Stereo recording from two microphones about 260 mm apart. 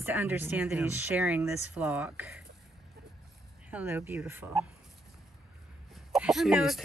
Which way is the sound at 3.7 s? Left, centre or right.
Centre.